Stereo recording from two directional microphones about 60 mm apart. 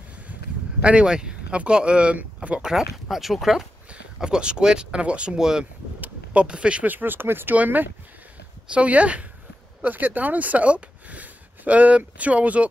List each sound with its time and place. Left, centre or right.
0.8 s speech: centre
2.6 s speech: centre
4.2 s speech: centre
5.9 s a sound: right
6.4 s speech: centre
6.9 s speech: right